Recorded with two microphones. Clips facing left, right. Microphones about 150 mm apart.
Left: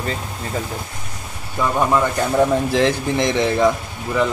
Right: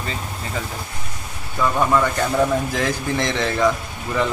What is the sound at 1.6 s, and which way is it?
A man's voice, 15° left (ahead or behind).